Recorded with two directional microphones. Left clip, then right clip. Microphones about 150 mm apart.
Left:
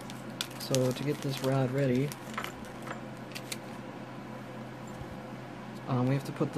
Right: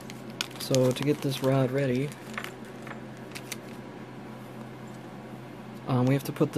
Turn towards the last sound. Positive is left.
turn(degrees=-50)  # may be behind; listen again after turning